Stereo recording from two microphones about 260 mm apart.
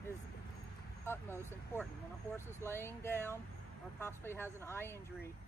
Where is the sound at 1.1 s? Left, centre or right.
Centre.